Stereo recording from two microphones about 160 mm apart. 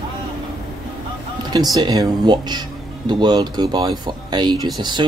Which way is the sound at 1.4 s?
25° right (ahead or behind).